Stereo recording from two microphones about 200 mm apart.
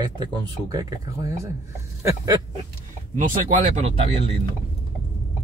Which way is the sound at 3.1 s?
35° right (ahead or behind).